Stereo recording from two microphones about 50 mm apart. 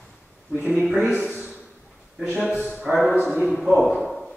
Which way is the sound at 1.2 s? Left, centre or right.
Centre.